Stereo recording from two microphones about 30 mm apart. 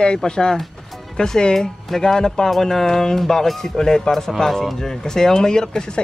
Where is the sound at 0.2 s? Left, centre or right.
Centre.